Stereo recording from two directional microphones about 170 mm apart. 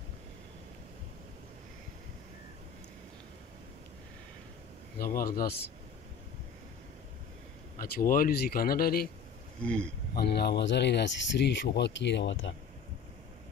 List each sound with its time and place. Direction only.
4.9 s speech: 60° left (ahead or behind)
7.8 s speech: 55° left (ahead or behind)
9.6 s speech: 5° left (ahead or behind)
10.1 s speech: 75° left (ahead or behind); by 12.5 s 90° left